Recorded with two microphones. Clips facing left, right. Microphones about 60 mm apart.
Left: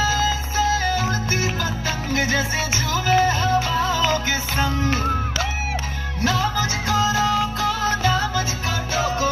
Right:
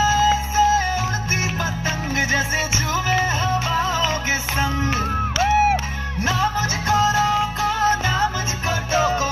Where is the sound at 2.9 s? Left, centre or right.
Right.